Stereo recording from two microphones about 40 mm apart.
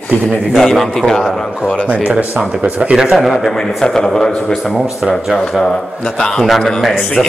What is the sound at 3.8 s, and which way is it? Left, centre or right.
Speech, centre.